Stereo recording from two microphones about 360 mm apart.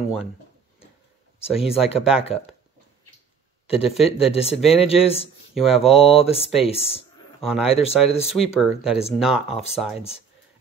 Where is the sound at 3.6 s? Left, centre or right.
Centre.